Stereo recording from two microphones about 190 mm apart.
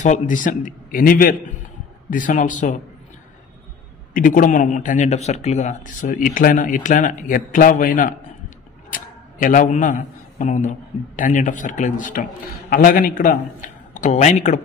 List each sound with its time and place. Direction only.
0.0 s speech: 40° left (ahead or behind)
4.1 s a man's voice: 45° left (ahead or behind)